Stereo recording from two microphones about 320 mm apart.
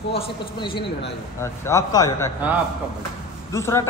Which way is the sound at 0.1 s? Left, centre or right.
Centre.